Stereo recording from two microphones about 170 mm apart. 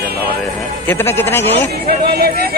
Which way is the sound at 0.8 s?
15° left (ahead or behind).